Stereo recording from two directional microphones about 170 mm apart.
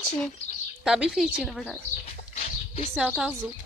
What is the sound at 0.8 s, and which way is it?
Speech, 5° right (ahead or behind).